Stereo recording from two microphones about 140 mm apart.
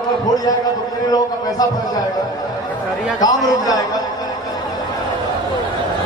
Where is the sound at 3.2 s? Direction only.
25° left (ahead or behind).